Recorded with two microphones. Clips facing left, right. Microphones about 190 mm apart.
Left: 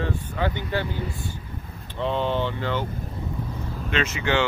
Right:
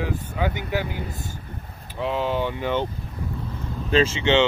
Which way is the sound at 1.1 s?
45° right (ahead or behind).